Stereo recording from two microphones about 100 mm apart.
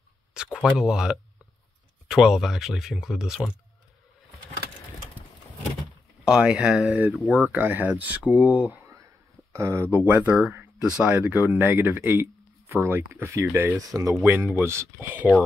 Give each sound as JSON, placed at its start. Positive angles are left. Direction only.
{"t": 0.3, "sound": "a sound", "side_deg": -5}
{"t": 2.0, "sound": "speech", "side_deg": -5}
{"t": 6.2, "sound": "speech", "side_deg": -10}
{"t": 9.5, "sound": "speech", "side_deg": -30}
{"t": 9.9, "sound": "speech", "side_deg": -15}
{"t": 13.7, "sound": "speech", "side_deg": -35}
{"t": 14.2, "sound": "speech", "side_deg": -20}